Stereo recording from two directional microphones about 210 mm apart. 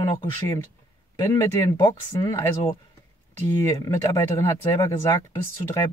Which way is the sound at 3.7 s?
15° left (ahead or behind).